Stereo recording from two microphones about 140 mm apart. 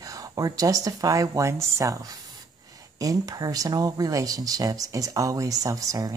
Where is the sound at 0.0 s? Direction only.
25° right (ahead or behind).